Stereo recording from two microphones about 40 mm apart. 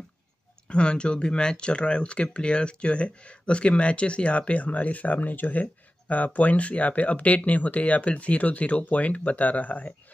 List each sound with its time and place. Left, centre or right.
0.7 s speech: left